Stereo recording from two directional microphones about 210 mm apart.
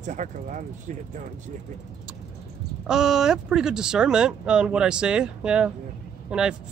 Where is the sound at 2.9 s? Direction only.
5° right (ahead or behind).